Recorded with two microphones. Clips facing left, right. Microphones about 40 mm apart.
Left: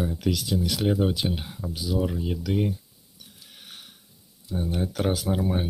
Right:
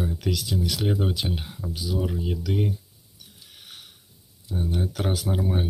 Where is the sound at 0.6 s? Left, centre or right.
Left.